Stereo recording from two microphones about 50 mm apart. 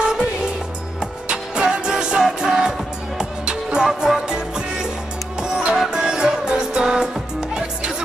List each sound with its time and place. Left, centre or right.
0.0 s music: centre
1.3 s music: centre